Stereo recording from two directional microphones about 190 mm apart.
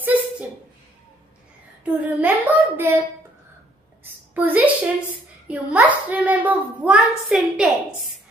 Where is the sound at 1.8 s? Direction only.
10° right (ahead or behind).